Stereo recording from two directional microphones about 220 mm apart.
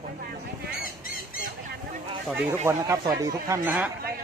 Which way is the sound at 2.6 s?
15° right (ahead or behind).